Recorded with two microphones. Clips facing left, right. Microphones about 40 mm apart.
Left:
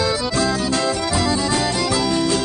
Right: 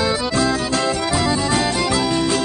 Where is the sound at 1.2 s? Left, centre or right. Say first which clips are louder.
Right 1 dB; right.